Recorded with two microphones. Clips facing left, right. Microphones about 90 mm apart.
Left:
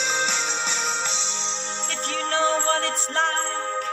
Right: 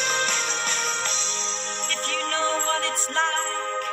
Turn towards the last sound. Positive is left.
turn(degrees=35)  # may be behind; listen again after turning